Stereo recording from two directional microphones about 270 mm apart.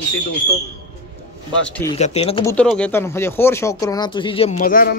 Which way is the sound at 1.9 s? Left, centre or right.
Left.